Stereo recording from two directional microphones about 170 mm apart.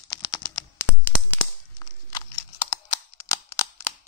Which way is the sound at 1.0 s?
10° left (ahead or behind).